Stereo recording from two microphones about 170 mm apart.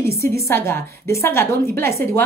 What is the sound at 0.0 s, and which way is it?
A woman's voice, 15° left (ahead or behind).